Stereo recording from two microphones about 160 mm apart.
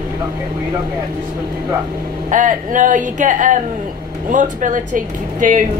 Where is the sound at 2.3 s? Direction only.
55° right (ahead or behind).